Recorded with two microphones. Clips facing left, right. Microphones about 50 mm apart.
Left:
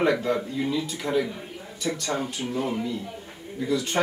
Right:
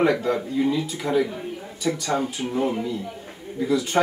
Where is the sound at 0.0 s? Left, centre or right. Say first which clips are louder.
Right 2 dB; centre.